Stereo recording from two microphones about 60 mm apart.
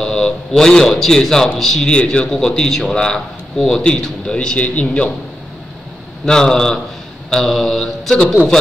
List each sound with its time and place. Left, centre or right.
0.0 s a man's voice: centre
6.2 s a man's voice: centre